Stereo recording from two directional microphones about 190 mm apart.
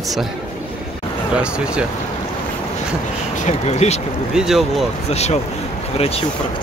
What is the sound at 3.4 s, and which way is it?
Speech, 35° left (ahead or behind).